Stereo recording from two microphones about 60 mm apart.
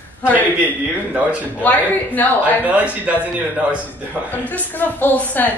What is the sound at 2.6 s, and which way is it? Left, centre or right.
Speech, right.